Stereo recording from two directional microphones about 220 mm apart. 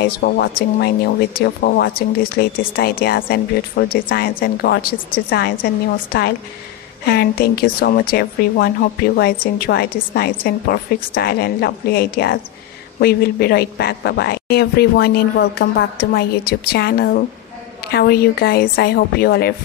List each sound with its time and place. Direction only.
0.0 s speech: 45° left (ahead or behind)